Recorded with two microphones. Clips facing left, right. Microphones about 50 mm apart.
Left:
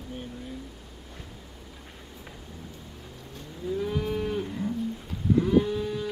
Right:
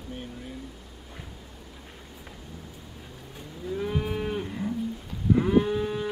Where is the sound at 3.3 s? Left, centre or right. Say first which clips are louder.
Left 2 dB; centre.